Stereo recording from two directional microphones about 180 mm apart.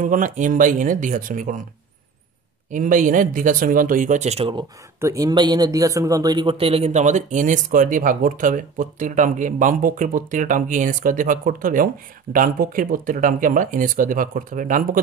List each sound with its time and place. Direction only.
0.0 s speech: 45° right (ahead or behind)
2.7 s speech: 45° right (ahead or behind)
5.0 s speech: 20° right (ahead or behind); by 14.9 s 45° right (ahead or behind)